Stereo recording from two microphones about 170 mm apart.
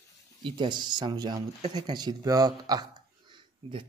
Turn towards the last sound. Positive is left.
turn(degrees=-25)  # may be behind; listen again after turning